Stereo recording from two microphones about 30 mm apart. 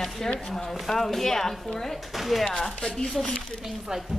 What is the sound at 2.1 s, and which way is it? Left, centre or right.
Speech, centre.